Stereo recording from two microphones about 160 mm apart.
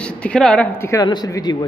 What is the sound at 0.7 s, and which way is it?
Speech, 15° left (ahead or behind).